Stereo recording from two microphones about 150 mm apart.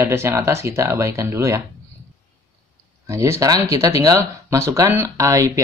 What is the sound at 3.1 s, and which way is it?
Speech, 20° right (ahead or behind).